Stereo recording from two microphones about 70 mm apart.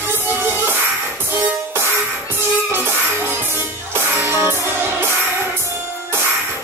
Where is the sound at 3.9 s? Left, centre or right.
Right.